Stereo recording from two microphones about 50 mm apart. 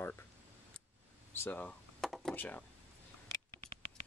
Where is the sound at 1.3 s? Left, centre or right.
Left.